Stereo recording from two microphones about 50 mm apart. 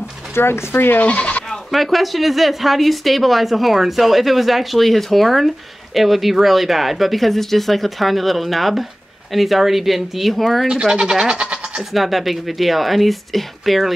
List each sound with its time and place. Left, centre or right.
0.3 s speech: left
1.0 s speech: left
1.7 s speech: centre
10.7 s speech: centre
11.8 s speech: centre